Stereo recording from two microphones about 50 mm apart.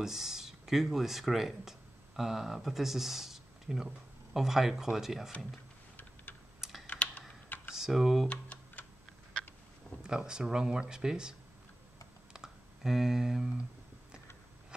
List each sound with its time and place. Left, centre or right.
0.0 s speech: centre
6.3 s typing: left
6.9 s computer keyboard: left
7.7 s speech: centre
8.3 s tick-tock: left
10.0 s speech: centre
12.3 s a sound: centre